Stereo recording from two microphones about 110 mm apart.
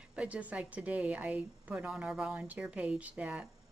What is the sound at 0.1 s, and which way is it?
Speech, 10° right (ahead or behind).